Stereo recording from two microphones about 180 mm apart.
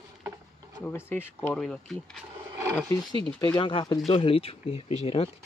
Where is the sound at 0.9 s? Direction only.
10° left (ahead or behind).